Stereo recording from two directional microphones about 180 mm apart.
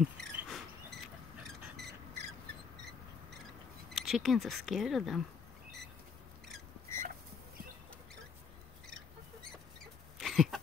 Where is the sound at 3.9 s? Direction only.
Centre (ahead or behind).